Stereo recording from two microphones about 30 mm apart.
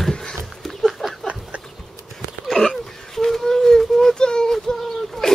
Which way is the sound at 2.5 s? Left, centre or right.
Centre.